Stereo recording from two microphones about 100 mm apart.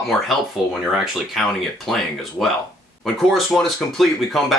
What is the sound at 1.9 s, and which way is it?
Speech, centre (ahead or behind).